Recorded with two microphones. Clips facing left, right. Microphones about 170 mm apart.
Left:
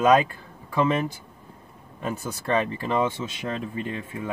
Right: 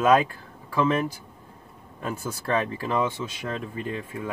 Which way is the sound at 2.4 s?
Centre (ahead or behind).